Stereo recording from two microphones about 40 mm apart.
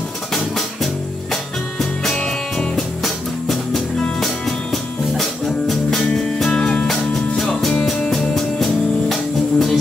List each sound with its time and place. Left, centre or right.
1.3 s music: centre
5.1 s music: centre
6.5 s music: left
6.9 s music: centre